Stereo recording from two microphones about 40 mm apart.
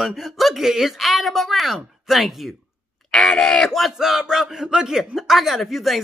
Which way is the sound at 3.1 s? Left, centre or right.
Centre.